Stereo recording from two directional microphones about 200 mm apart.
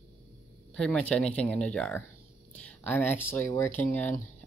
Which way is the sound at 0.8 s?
5° left (ahead or behind).